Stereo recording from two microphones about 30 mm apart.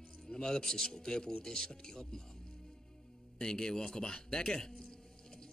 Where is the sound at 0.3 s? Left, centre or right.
Left.